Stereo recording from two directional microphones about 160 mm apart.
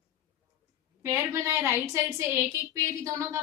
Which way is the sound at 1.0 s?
15° right (ahead or behind).